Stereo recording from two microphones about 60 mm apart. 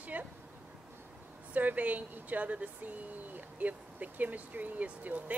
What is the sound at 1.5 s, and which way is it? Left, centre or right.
Speech, right.